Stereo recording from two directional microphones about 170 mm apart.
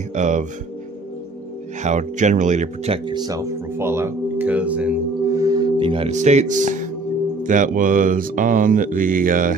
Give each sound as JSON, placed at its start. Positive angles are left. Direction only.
{"t": 0.1, "sound": "speech", "side_deg": -45}
{"t": 1.8, "sound": "speech", "side_deg": -45}